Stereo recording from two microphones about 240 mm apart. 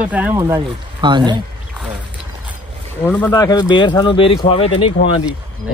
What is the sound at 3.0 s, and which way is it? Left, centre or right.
Speech, centre.